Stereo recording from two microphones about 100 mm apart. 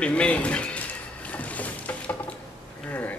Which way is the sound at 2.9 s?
20° left (ahead or behind).